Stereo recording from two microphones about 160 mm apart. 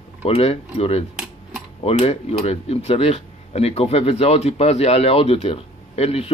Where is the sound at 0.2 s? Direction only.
40° left (ahead or behind).